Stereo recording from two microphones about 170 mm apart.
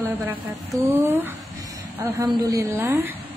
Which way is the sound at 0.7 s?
15° right (ahead or behind).